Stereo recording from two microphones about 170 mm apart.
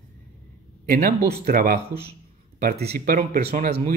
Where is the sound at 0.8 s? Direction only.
65° right (ahead or behind).